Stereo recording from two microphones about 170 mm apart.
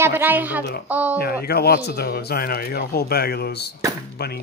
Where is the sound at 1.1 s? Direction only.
65° left (ahead or behind).